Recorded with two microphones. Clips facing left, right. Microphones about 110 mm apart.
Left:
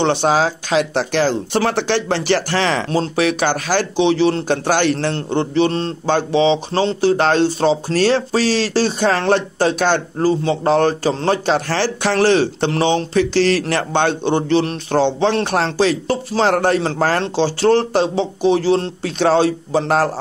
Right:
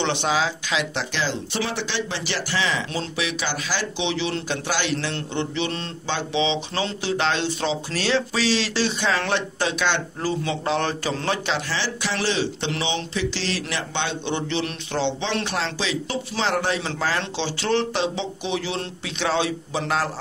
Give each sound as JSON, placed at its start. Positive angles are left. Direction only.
{"t": 0.0, "sound": "speech", "side_deg": 40}